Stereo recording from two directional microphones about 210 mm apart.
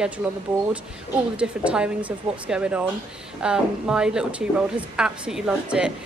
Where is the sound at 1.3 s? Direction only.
5° right (ahead or behind).